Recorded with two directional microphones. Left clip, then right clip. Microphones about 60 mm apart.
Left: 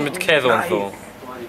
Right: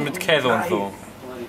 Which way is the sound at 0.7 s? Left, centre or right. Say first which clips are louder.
Left 2 dB; left.